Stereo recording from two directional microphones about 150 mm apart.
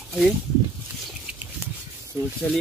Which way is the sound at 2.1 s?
20° right (ahead or behind).